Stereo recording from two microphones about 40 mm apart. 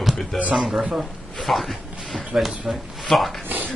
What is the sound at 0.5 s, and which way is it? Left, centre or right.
Speech, centre.